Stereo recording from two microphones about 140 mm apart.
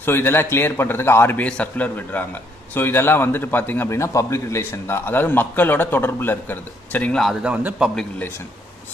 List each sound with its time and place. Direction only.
0.0 s a man's voice: 15° left (ahead or behind)
7.4 s a man's voice: 10° right (ahead or behind)
7.9 s speech: 5° left (ahead or behind)